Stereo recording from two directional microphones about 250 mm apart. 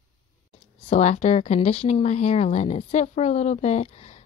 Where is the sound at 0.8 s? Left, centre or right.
Left.